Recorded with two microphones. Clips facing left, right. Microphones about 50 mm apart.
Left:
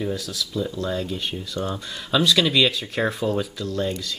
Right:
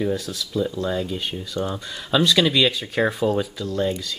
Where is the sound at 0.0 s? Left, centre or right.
Right.